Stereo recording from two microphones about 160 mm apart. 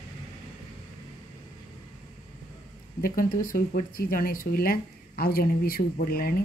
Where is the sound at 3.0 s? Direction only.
65° left (ahead or behind).